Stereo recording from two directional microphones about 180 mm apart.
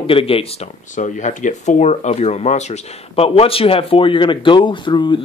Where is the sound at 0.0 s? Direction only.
30° left (ahead or behind).